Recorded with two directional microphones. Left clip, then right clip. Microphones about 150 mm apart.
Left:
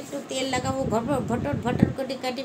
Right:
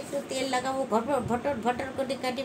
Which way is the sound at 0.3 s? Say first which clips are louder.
Left 3 dB; 5° left (ahead or behind).